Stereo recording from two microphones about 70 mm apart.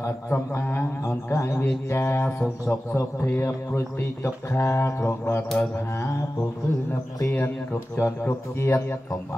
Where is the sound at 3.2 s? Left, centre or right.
Left.